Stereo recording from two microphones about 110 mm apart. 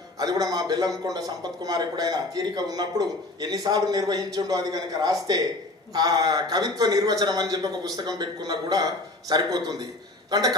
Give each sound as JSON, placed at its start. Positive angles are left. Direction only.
{"t": 0.2, "sound": "speech", "side_deg": -35}